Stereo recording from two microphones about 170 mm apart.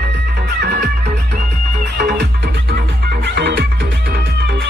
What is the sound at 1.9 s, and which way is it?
Music, 60° right (ahead or behind).